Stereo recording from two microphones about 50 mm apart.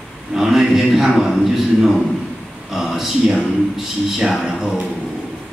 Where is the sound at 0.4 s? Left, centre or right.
Centre.